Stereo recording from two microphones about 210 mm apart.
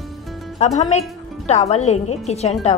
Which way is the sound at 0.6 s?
30° left (ahead or behind).